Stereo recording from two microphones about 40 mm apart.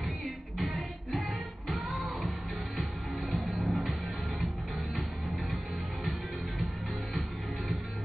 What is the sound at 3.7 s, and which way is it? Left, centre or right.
Music, centre.